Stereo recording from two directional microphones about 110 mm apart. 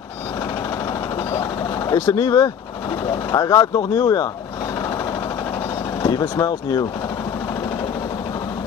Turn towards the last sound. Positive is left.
turn(degrees=35)  # may be behind; listen again after turning